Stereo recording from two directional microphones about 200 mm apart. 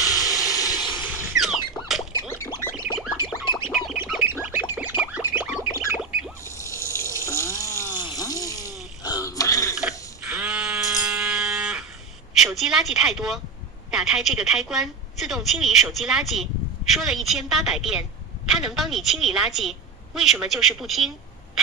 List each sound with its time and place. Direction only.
0.0 s vehicle: 15° left (ahead or behind)
1.4 s squeak: centre (ahead or behind)
2.1 s a sound: 15° left (ahead or behind)
3.0 s music: 5° right (ahead or behind)
6.4 s water tap: 15° left (ahead or behind)
7.2 s water: 15° left (ahead or behind)
9.8 s a sound: 5° right (ahead or behind)
12.4 s a woman's voice: centre (ahead or behind)